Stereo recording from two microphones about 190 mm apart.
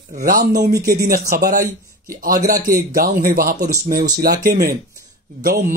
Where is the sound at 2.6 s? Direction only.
50° right (ahead or behind).